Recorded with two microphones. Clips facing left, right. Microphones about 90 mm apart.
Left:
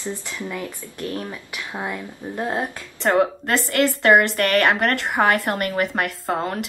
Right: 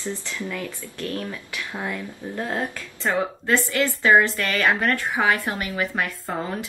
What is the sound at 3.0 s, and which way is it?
A woman's voice, 60° left (ahead or behind).